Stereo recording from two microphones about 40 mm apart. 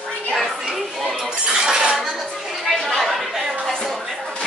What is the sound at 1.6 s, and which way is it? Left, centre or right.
Cutlery, centre.